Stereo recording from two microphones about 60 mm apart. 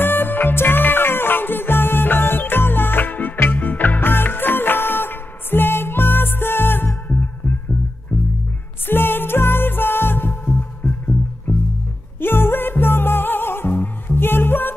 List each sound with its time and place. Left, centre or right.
0.0 s music: left
8.8 s music: left